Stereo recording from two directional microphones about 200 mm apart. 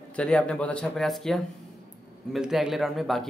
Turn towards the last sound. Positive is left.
turn(degrees=0)  # may be behind; listen again after turning